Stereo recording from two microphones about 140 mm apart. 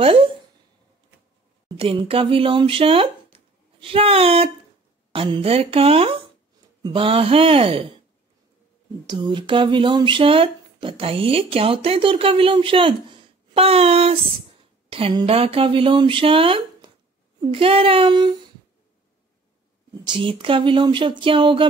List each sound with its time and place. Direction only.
0.0 s a sound: 40° right (ahead or behind)
1.8 s speech: 40° right (ahead or behind)
9.0 s speech: 35° right (ahead or behind)
13.5 s child singing: 45° right (ahead or behind)
14.9 s speech: 40° right (ahead or behind)
20.1 s speech: 40° right (ahead or behind)